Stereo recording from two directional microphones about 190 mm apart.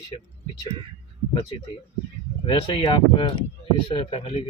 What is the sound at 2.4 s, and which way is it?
A man's voice, 25° left (ahead or behind).